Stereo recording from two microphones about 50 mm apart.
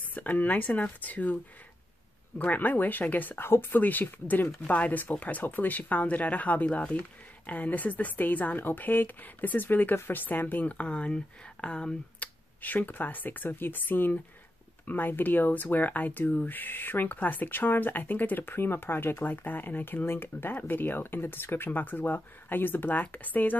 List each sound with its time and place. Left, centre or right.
0.1 s speech: left
3.4 s speech: left
3.8 s speech: left
12.6 s speech: left